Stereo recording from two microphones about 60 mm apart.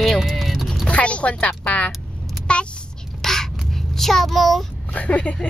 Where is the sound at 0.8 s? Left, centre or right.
Left.